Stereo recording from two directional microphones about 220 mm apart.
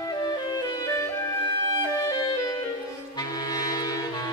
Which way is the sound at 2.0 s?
15° left (ahead or behind).